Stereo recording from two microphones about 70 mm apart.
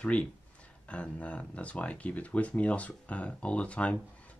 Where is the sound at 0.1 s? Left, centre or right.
Centre.